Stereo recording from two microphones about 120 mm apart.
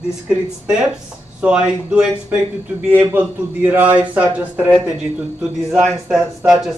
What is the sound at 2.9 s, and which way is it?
Speech, 15° right (ahead or behind).